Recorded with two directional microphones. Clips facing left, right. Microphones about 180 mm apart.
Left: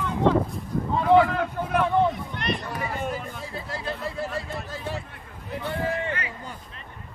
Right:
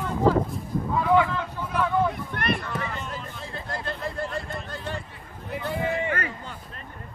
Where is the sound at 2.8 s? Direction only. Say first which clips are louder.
Left 4 dB; 10° left (ahead or behind).